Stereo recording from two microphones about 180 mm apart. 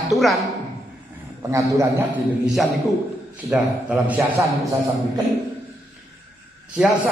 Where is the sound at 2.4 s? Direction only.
Centre (ahead or behind).